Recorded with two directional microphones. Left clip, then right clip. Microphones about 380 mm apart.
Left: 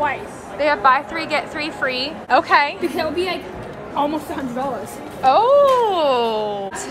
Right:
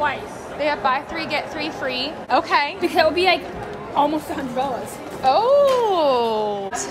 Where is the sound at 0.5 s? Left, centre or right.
Centre.